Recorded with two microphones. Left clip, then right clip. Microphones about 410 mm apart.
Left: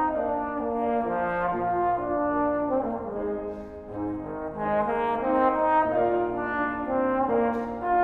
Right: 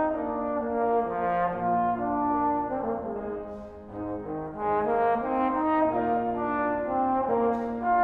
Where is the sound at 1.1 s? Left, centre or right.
Right.